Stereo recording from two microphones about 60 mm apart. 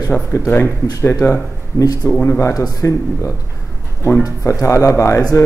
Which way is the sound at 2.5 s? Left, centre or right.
Left.